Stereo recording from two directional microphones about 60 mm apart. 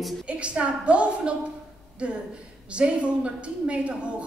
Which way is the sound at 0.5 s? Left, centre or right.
Centre.